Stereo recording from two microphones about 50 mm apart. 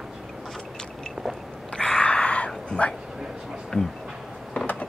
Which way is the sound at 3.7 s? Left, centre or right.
Centre.